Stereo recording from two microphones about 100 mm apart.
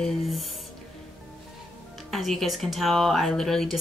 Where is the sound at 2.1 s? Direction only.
Centre (ahead or behind).